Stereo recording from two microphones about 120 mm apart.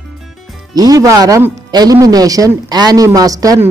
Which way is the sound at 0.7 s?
30° right (ahead or behind).